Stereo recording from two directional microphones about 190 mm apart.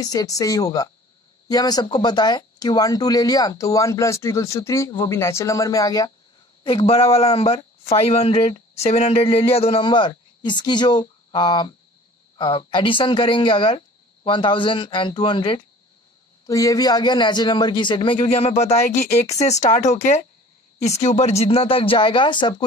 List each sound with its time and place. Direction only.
0.0 s a man's voice: 20° left (ahead or behind)